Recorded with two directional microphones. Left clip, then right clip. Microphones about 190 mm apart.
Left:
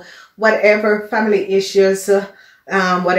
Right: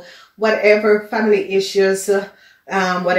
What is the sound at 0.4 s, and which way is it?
Speech, 35° left (ahead or behind).